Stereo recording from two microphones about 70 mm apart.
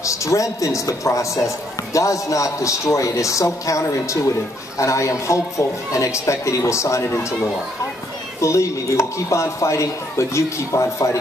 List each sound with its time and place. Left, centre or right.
0.0 s speech: left
8.4 s speech: left